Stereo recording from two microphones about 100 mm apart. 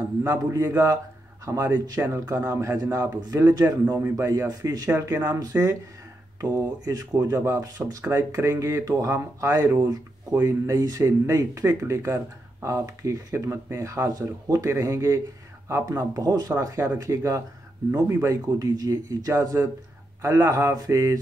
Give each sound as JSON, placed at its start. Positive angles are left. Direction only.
{"t": 0.2, "sound": "a man's voice", "side_deg": -30}
{"t": 1.7, "sound": "a man's voice", "side_deg": -20}
{"t": 3.8, "sound": "a man's voice", "side_deg": -20}
{"t": 4.3, "sound": "speech", "side_deg": -35}
{"t": 4.9, "sound": "a man's voice", "side_deg": -20}
{"t": 6.9, "sound": "a man's voice", "side_deg": -35}